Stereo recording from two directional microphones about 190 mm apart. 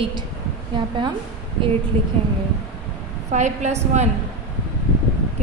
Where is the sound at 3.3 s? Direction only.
40° right (ahead or behind).